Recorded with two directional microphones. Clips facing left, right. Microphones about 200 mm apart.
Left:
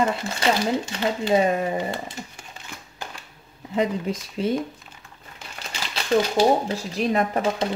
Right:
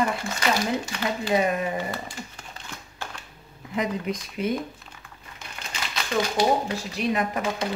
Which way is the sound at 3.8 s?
30° left (ahead or behind).